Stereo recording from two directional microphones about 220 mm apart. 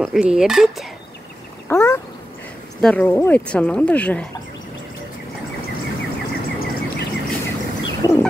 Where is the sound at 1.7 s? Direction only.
10° left (ahead or behind).